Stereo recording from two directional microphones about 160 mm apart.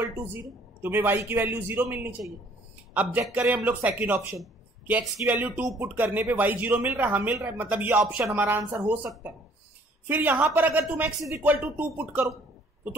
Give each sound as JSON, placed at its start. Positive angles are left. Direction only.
{"t": 0.0, "sound": "speech", "side_deg": -15}